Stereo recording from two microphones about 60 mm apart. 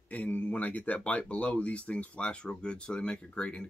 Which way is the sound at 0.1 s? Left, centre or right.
Left.